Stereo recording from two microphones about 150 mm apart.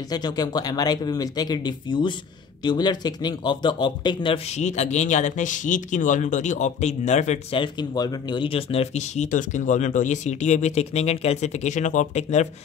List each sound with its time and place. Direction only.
0.1 s speech: 25° left (ahead or behind)
4.6 s speech: 50° left (ahead or behind)
7.5 s speech: 30° left (ahead or behind); by 12.4 s 50° left (ahead or behind)